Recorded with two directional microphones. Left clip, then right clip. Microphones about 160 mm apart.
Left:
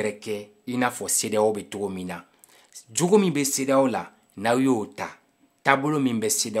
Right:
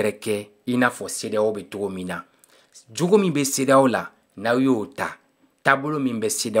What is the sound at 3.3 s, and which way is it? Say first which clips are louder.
Speech: right 4 dB; 10° right (ahead or behind).